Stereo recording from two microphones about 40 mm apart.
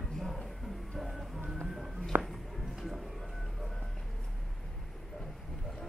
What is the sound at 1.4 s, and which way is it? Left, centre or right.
Speech, right.